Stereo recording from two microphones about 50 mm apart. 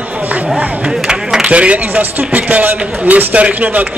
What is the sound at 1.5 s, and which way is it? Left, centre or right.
A man's voice, right.